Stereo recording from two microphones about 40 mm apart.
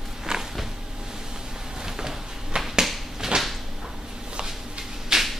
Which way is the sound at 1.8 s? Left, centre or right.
Centre.